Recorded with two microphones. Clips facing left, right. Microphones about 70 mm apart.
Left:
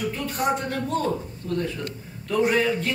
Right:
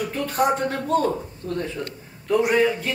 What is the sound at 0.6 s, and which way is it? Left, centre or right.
A man's voice, right.